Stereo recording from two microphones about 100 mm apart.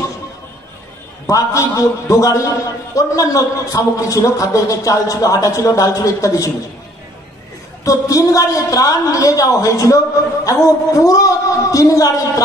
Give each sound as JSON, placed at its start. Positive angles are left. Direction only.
{"t": 1.2, "sound": "a man's voice", "side_deg": 35}
{"t": 7.8, "sound": "a man's voice", "side_deg": 35}